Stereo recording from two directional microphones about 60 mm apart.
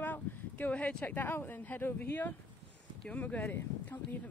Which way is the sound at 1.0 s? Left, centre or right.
Left.